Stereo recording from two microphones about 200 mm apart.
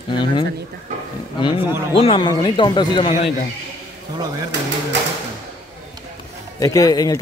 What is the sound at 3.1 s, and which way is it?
Speech, 35° left (ahead or behind).